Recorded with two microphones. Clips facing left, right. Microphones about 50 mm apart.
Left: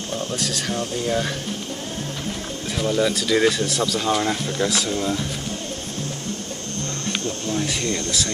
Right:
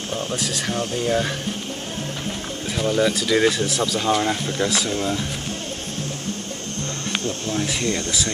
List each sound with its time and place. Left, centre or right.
0.1 s speech: centre
2.7 s speech: centre
7.1 s speech: centre